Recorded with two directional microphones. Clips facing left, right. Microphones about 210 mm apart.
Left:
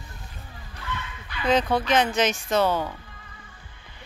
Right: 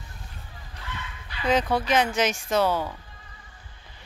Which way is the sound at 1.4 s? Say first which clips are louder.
Left 1 dB; 10° right (ahead or behind).